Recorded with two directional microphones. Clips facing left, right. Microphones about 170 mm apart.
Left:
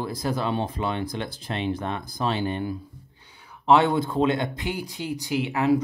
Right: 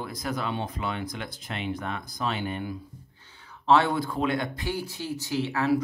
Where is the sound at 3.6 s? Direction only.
20° left (ahead or behind).